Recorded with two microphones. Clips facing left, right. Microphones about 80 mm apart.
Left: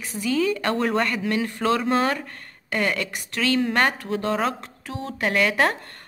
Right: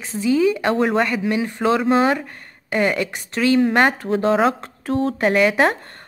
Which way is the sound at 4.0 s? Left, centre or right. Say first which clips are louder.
Right 7 dB; right.